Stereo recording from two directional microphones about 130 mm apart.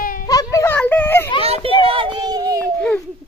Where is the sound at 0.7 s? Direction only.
15° left (ahead or behind).